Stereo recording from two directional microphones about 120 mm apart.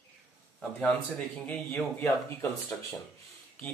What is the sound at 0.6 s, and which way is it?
A man's voice, 10° left (ahead or behind).